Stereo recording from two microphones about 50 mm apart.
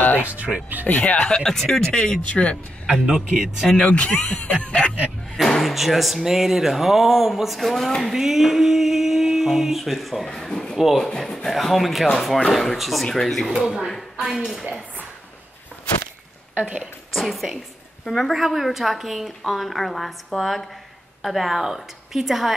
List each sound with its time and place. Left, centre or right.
0.2 s speech: right
0.8 s speech: left
1.1 s speech: centre
2.2 s speech: left
2.9 s a man's voice: centre
3.7 s speech: left
5.3 s speech: centre
10.5 s speech: centre
10.8 s speech: centre
11.1 s a man's voice: centre
16.5 s a woman's voice: right
17.1 s speech: centre